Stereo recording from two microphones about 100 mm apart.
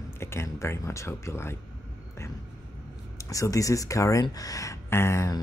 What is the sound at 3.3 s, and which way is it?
Speech, 35° left (ahead or behind).